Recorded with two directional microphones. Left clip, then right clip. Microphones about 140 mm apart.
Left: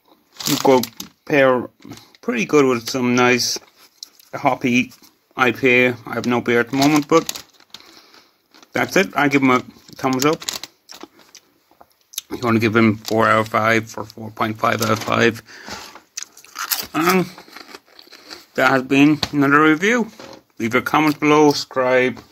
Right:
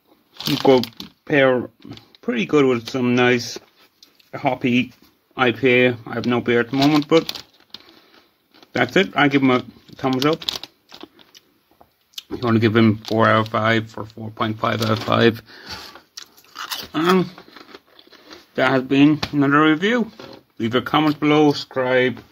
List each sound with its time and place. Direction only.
0.7 s speech: 20° right (ahead or behind)
8.7 s speech: 20° right (ahead or behind)
9.8 s a sound: 20° right (ahead or behind)
10.1 s speech: 10° left (ahead or behind)
12.2 s speech: 20° right (ahead or behind)
16.2 s chewing: 30° right (ahead or behind)
19.3 s speech: 30° right (ahead or behind)